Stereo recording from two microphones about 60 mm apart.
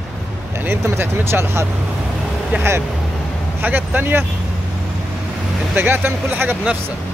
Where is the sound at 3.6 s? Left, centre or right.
Right.